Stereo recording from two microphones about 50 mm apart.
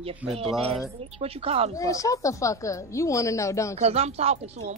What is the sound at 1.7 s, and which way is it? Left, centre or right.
Speech, left.